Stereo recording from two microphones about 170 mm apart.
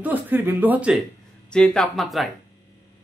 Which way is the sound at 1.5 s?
5° left (ahead or behind).